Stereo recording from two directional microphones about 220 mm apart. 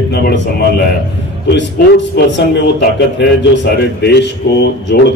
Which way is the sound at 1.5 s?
55° left (ahead or behind).